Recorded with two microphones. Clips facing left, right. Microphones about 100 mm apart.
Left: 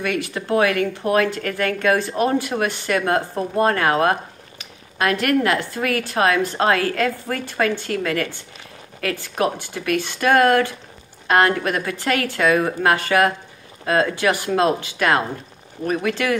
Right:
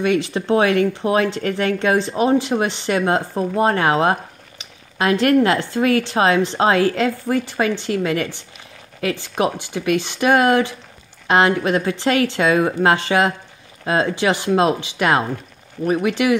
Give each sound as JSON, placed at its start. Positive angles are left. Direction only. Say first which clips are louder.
{"t": 0.0, "sound": "speech", "louder": "right 5 dB", "side_deg": -25}